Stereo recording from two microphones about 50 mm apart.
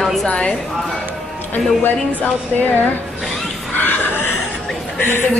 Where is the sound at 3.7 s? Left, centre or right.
Left.